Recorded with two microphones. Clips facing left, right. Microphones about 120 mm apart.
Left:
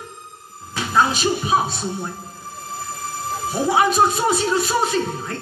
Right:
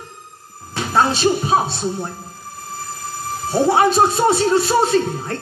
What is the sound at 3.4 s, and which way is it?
Speech, 30° right (ahead or behind).